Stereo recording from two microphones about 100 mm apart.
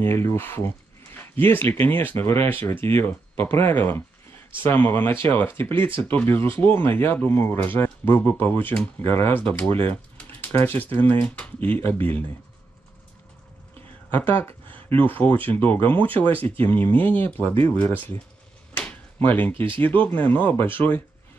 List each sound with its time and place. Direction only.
0.0 s speech: 20° left (ahead or behind)
9.8 s typing: 20° left (ahead or behind)
10.6 s speech: 20° left (ahead or behind)
14.1 s speech: 20° left (ahead or behind)
18.8 s a sound: 15° left (ahead or behind)
19.5 s speech: 60° right (ahead or behind)
19.8 s speech: 20° left (ahead or behind)